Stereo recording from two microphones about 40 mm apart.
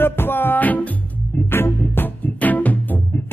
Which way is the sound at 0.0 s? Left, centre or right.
Left.